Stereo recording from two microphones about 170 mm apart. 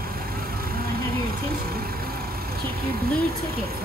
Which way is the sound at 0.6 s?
60° right (ahead or behind).